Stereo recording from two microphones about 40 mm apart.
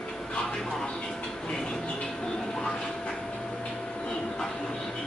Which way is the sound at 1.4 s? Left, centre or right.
Left.